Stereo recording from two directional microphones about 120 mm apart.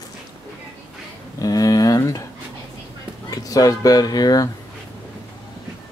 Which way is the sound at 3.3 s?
30° left (ahead or behind).